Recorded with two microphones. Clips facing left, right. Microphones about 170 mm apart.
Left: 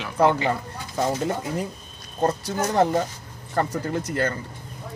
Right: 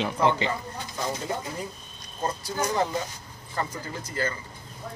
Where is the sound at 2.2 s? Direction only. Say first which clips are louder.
Left 4 dB; 70° left (ahead or behind).